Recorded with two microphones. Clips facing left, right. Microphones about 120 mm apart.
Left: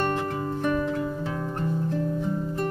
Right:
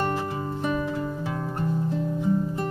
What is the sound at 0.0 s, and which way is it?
Music, 10° right (ahead or behind).